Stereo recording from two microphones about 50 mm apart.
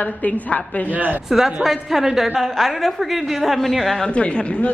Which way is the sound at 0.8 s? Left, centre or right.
Right.